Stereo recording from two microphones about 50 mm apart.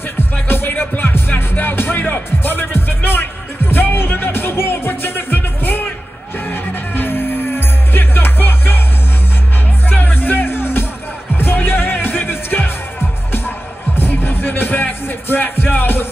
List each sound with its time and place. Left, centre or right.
0.5 s music: left
9.8 s music: left
13.9 s music: left